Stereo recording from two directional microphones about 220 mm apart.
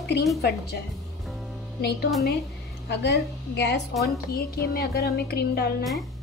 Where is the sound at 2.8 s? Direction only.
50° left (ahead or behind).